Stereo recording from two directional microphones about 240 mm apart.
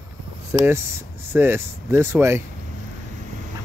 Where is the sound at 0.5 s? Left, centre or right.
Centre.